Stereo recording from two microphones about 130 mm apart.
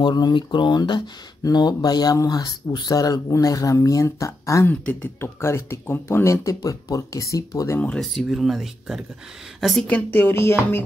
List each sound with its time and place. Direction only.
0.0 s speech: 35° left (ahead or behind)
7.8 s a woman's voice: 5° left (ahead or behind)
9.8 s music: 15° left (ahead or behind)